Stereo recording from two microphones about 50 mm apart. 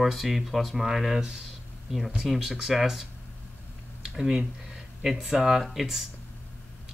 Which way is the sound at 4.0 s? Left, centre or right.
Centre.